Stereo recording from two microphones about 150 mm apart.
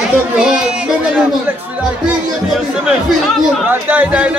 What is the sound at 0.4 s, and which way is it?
Speech, 5° right (ahead or behind).